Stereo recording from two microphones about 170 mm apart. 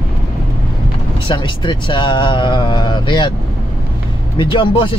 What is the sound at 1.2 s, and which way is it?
Speech, 30° left (ahead or behind).